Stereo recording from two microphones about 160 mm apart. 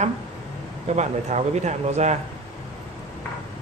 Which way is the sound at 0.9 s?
45° right (ahead or behind).